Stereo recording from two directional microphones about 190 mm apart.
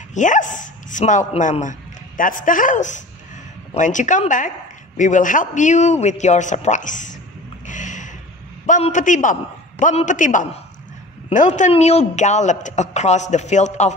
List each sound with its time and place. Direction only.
0.1 s a man's voice: 40° left (ahead or behind)
7.6 s a sound: 40° left (ahead or behind)
8.6 s a man's voice: 40° left (ahead or behind)